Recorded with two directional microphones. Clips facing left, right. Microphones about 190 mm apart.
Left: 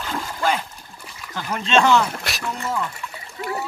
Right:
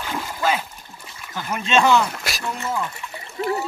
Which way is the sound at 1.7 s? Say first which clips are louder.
Even; 10° right (ahead or behind).